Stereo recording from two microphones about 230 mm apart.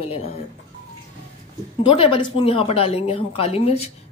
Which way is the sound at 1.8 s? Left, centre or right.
Left.